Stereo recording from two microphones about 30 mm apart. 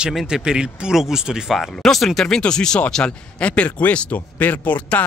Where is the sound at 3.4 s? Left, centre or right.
Left.